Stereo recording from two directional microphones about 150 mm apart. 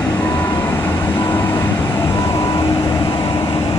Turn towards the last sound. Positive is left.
turn(degrees=35)  # may be behind; listen again after turning